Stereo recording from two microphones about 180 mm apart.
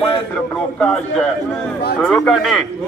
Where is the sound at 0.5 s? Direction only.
5° left (ahead or behind).